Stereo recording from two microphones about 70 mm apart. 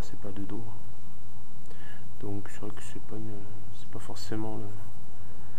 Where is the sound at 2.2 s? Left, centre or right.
Centre.